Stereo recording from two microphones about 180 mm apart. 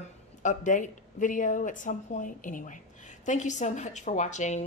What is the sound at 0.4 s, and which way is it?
Speech, 45° left (ahead or behind).